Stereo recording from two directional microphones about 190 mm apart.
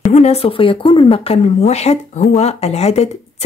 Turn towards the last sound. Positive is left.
turn(degrees=35)  # may be behind; listen again after turning